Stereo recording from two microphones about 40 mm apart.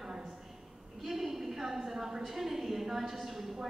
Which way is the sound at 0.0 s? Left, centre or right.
Centre.